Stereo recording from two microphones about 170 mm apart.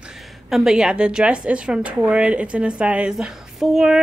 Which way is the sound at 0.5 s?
5° right (ahead or behind).